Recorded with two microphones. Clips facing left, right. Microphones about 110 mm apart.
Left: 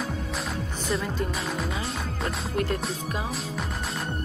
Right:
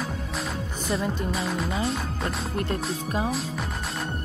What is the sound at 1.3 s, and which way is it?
Speech, centre (ahead or behind).